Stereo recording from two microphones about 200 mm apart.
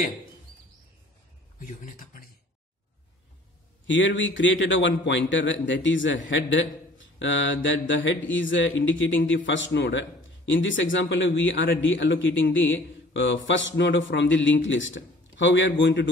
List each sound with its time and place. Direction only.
1.7 s speech: 40° left (ahead or behind)
3.8 s a man's voice: 65° left (ahead or behind)